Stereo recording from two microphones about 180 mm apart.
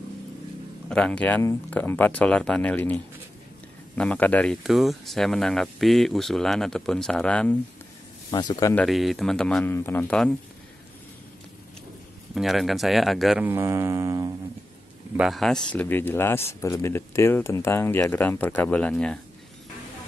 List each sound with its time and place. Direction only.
0.8 s speech: 5° left (ahead or behind)
8.3 s speech: 25° left (ahead or behind)
8.7 s speech: centre (ahead or behind)
12.4 s speech: centre (ahead or behind)
13.5 s mantra: 15° right (ahead or behind)
15.1 s speech: centre (ahead or behind)